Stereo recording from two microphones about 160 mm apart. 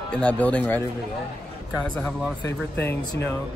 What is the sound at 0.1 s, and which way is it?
Speech, 5° left (ahead or behind).